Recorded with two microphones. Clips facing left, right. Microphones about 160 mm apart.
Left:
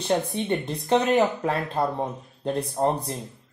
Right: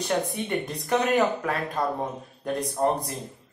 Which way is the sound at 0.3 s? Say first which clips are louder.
Left 2 dB; 20° left (ahead or behind).